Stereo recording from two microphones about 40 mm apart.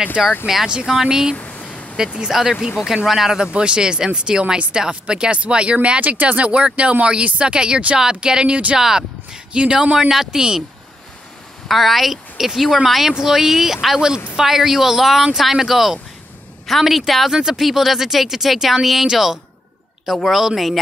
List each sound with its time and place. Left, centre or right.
0.2 s speech: centre
1.3 s a sound: left
2.3 s speech: centre
3.5 s speech: right
8.7 s a sound: centre
9.5 s speech: right
11.7 s speech: centre
17.3 s speech: centre
17.6 s speech: centre